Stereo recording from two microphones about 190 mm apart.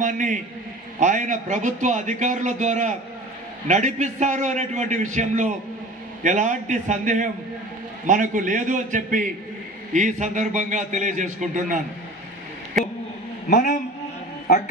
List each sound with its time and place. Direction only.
0.0 s a man's voice: 40° right (ahead or behind)
13.5 s a man's voice: 60° left (ahead or behind)